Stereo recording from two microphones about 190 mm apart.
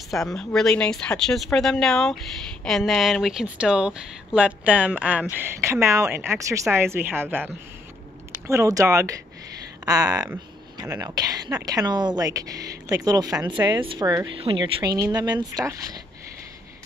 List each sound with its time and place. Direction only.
0.1 s speech: centre (ahead or behind); by 16.0 s 20° right (ahead or behind)